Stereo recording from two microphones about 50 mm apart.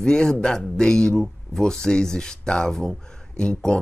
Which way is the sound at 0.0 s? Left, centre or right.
Centre.